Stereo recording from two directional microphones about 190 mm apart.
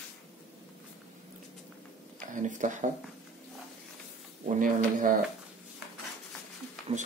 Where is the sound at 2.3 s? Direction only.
40° right (ahead or behind).